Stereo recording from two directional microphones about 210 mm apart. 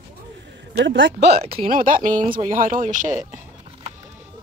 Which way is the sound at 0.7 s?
60° right (ahead or behind).